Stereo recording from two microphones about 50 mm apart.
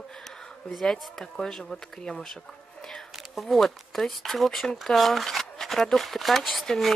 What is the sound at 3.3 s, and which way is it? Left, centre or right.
Speech, centre.